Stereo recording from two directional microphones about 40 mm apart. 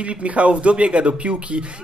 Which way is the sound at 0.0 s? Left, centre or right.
Right.